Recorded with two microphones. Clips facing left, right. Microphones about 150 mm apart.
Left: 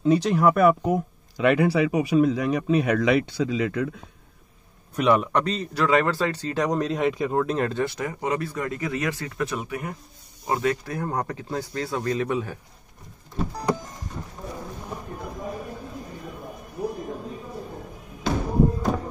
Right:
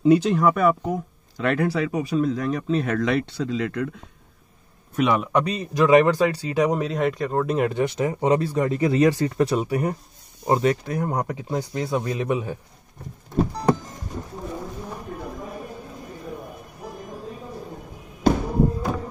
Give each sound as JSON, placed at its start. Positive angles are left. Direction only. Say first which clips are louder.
{"t": 0.0, "sound": "speech", "louder": "right 2 dB", "side_deg": -5}
{"t": 4.9, "sound": "a man's voice", "louder": "even", "side_deg": 0}
{"t": 5.4, "sound": "speech", "louder": "right 4 dB", "side_deg": -15}
{"t": 7.4, "sound": "speech", "louder": "right 3 dB", "side_deg": -10}
{"t": 10.4, "sound": "speech", "louder": "right 4 dB", "side_deg": -20}
{"t": 18.3, "sound": "a sound", "louder": "right 6 dB", "side_deg": -50}